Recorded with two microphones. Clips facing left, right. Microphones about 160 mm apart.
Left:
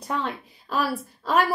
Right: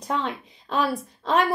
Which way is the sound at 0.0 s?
10° left (ahead or behind).